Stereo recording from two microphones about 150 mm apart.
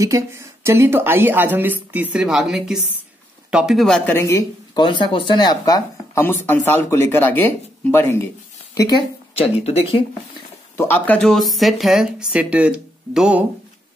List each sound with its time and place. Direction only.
0.0 s a woman's voice: 20° right (ahead or behind); by 4.1 s 5° left (ahead or behind)
4.1 s speech: 20° left (ahead or behind)
9.3 s speech: 40° left (ahead or behind)
10.8 s speech: 10° left (ahead or behind); by 13.4 s 5° right (ahead or behind)